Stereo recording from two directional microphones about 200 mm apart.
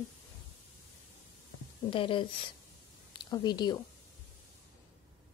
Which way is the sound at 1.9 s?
25° left (ahead or behind).